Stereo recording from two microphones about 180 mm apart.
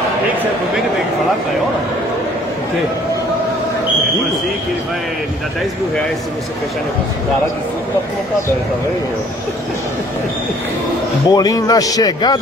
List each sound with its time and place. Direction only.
11.2 s a man's voice: 20° left (ahead or behind)